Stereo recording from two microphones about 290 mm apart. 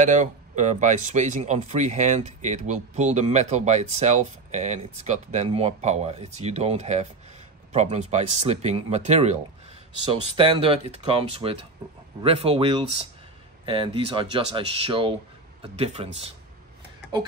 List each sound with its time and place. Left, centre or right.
0.0 s speech: right